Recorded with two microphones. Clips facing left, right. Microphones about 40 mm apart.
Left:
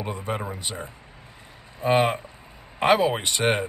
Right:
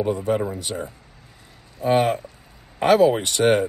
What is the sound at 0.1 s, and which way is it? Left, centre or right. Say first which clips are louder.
Speech: right 8 dB; left.